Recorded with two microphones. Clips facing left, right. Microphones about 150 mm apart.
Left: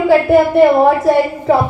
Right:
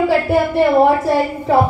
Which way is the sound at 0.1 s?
75° left (ahead or behind).